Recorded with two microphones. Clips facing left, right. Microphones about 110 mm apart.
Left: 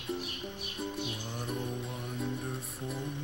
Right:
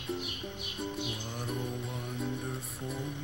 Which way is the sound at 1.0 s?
15° right (ahead or behind).